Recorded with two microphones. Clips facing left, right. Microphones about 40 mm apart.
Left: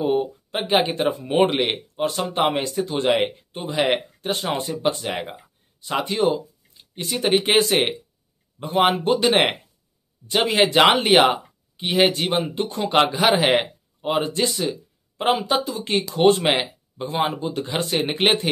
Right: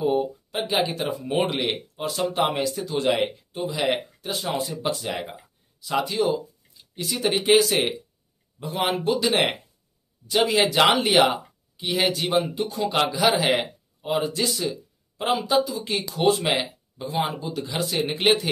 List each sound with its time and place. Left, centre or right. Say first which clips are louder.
0.1 s speech: left 2 dB; left
0.6 s speech: left 4 dB; left
1.4 s speech: left 8 dB; left
5.9 s a sound: left 2 dB; left
7.1 s speech: left 1 dB; left
15.2 s speech: left 1 dB; left